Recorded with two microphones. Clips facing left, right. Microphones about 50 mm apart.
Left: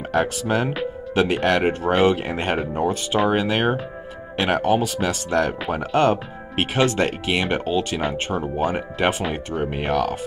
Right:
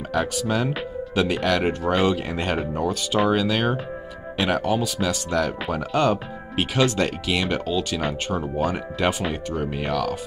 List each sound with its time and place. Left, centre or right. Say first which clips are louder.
0.1 s speech: left 3 dB; left